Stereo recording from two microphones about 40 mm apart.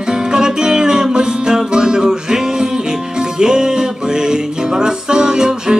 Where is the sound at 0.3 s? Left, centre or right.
Centre.